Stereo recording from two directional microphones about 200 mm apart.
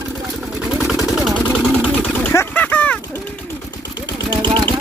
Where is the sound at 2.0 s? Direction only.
10° left (ahead or behind).